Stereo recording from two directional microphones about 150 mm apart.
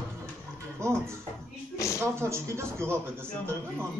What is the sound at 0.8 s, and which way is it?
Speech, 20° right (ahead or behind).